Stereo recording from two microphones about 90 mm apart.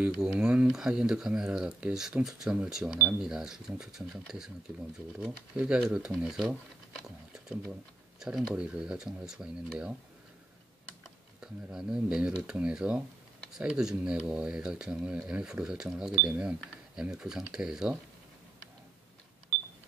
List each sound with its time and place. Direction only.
0.0 s speech: 10° right (ahead or behind)
4.7 s speech: 20° right (ahead or behind)
8.2 s speech: 10° right (ahead or behind)
11.4 s speech: 10° right (ahead or behind)